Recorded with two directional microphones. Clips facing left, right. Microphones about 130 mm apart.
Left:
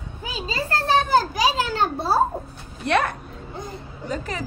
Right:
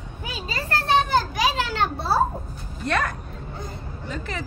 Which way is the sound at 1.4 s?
40° left (ahead or behind).